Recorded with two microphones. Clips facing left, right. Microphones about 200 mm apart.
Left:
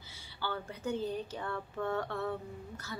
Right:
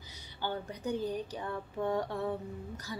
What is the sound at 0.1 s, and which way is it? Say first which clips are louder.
A woman's voice: right 2 dB; 20° right (ahead or behind).